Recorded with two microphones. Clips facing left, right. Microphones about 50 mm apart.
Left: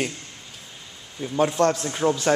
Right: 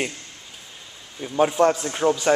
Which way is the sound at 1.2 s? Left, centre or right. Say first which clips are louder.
Right 2 dB; centre.